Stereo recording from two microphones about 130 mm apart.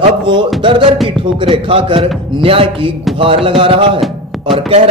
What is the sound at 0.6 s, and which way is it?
Music, 40° right (ahead or behind).